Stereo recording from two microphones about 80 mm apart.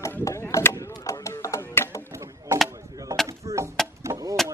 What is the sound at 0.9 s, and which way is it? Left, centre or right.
Music, left.